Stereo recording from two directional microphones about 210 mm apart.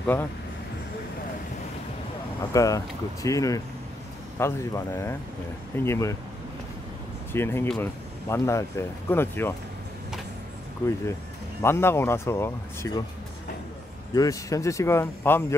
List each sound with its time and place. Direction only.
0.0 s speech: 10° left (ahead or behind)
2.5 s speech: 15° left (ahead or behind)
7.3 s speech: 10° left (ahead or behind)
10.8 s speech: 15° left (ahead or behind)
14.1 s speech: 15° left (ahead or behind)